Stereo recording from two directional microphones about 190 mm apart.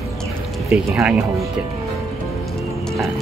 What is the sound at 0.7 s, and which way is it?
Speech, 5° right (ahead or behind).